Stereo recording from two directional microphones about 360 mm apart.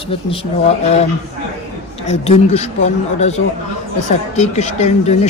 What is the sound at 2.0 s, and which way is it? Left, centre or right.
Speech, centre.